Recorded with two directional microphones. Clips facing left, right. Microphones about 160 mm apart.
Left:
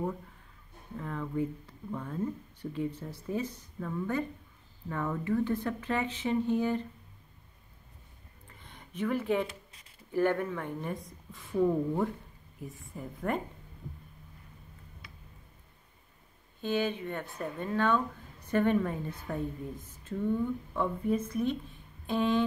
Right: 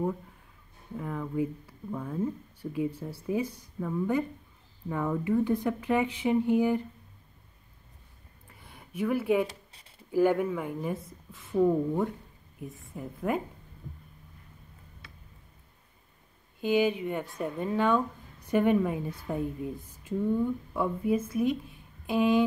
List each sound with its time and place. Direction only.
0.9 s speech: 10° right (ahead or behind)
8.5 s a sound: 5° right (ahead or behind)
9.5 s a sound: 30° right (ahead or behind)
10.1 s speech: 10° right (ahead or behind)
12.5 s a woman's voice: centre (ahead or behind)
16.6 s speech: 10° right (ahead or behind)